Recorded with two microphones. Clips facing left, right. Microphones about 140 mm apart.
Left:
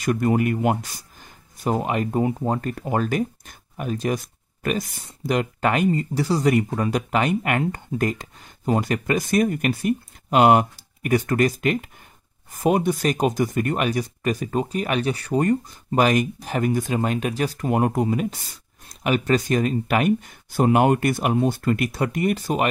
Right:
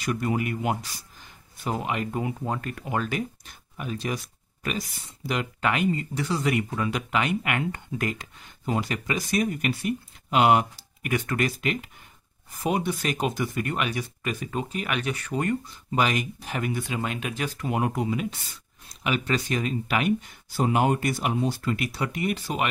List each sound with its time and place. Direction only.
0.0 s speech: 45° left (ahead or behind)